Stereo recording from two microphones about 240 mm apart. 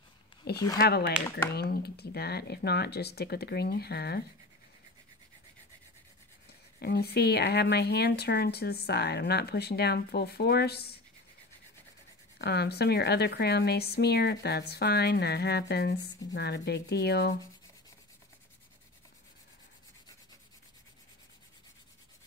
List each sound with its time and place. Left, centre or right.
0.7 s speech: left
6.8 s speech: left
12.4 s speech: left